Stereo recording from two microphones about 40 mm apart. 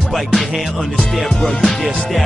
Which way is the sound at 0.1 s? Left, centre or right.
Centre.